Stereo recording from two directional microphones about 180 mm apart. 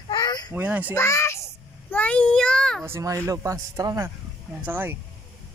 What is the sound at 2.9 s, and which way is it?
Speech, 15° right (ahead or behind).